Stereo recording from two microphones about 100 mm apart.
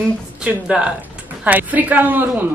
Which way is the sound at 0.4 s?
10° right (ahead or behind).